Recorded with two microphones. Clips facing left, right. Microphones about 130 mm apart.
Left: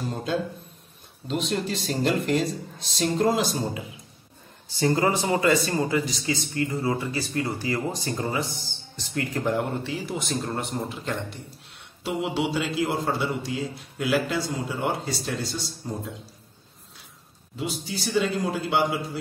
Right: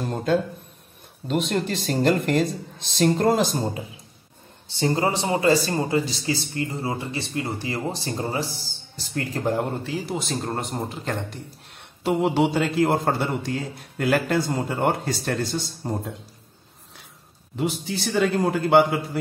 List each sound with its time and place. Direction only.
0.0 s a man's voice: 50° right (ahead or behind)
4.6 s a man's voice: 25° right (ahead or behind); by 15.9 s 55° right (ahead or behind)
17.6 s a man's voice: 60° right (ahead or behind)